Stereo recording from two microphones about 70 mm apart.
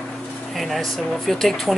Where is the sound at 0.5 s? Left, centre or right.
Centre.